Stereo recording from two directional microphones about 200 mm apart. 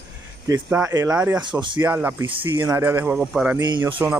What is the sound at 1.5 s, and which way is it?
Speech, 25° right (ahead or behind).